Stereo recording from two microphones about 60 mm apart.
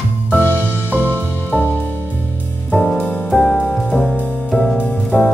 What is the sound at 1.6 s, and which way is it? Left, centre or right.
Music, left.